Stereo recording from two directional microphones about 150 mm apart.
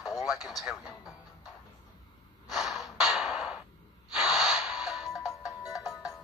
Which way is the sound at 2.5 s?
Centre (ahead or behind).